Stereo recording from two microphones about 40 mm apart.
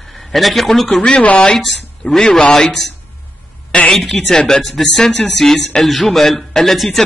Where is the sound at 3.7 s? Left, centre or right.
Left.